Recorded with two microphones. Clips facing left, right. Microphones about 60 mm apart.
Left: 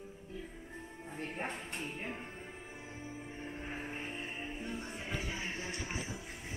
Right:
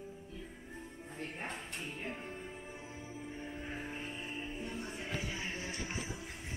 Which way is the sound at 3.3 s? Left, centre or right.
Centre.